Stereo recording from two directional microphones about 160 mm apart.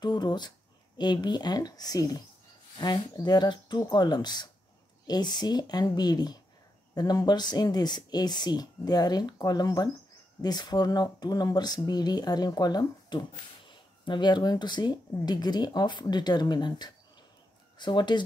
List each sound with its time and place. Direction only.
0.0 s speech: 25° left (ahead or behind)